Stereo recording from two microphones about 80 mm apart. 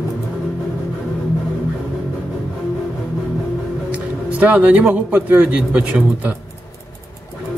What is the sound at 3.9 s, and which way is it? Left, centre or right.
A man's voice, centre.